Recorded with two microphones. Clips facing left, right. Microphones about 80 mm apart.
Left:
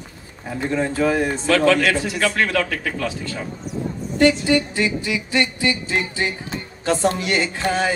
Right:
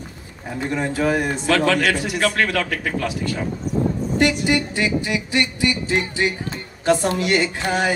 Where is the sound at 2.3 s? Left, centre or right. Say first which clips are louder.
Left 1 dB; left.